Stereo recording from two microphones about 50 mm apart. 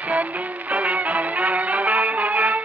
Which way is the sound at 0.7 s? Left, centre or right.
Right.